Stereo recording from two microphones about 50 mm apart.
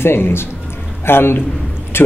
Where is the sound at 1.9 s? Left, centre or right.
Left.